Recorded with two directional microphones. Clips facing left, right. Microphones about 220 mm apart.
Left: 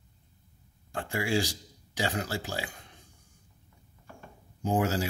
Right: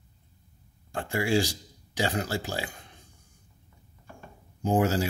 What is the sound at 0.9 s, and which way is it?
Speech, 30° right (ahead or behind).